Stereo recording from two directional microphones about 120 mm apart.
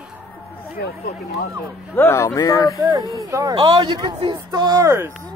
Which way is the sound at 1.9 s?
20° left (ahead or behind).